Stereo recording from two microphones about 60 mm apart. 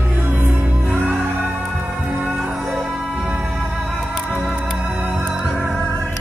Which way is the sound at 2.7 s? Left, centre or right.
Right.